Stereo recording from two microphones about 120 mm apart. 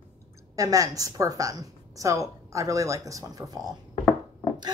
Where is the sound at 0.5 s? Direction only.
30° right (ahead or behind).